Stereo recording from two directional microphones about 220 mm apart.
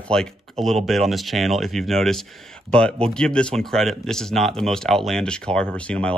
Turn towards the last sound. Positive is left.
turn(degrees=5)  # may be behind; listen again after turning